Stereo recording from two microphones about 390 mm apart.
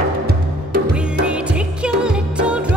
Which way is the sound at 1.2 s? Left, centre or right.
Centre.